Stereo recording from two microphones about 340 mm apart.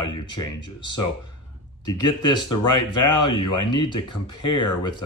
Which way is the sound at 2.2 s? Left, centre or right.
Centre.